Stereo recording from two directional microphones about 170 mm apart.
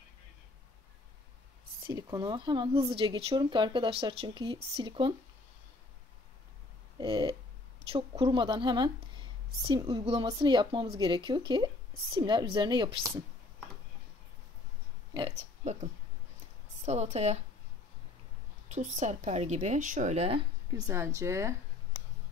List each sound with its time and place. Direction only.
1.9 s speech: 20° right (ahead or behind)
7.0 s speech: 25° right (ahead or behind)
15.3 s a woman's voice: 40° right (ahead or behind)
18.7 s speech: 45° right (ahead or behind)
20.7 s speech: 20° right (ahead or behind)